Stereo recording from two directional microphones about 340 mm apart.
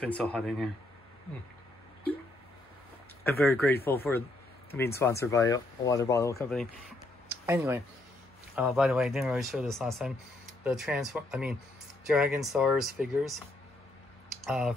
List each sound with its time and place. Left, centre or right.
0.0 s speech: centre
3.3 s speech: centre
14.4 s speech: centre